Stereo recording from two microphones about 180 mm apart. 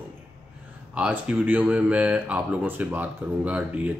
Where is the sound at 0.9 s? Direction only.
5° right (ahead or behind).